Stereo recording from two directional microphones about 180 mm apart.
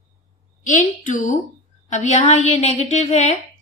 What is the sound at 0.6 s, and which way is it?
A woman's voice, 45° left (ahead or behind).